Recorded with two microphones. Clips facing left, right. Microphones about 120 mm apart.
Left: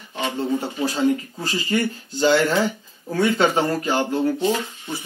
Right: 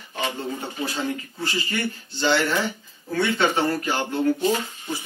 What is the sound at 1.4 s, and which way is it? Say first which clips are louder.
Speech: left 1 dB; 40° left (ahead or behind).